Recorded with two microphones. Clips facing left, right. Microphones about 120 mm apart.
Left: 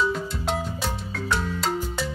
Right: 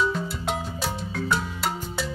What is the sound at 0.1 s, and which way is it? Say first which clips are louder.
Music: left 1 dB; 5° right (ahead or behind).